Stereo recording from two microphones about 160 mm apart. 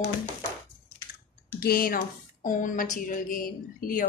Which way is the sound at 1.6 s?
70° left (ahead or behind).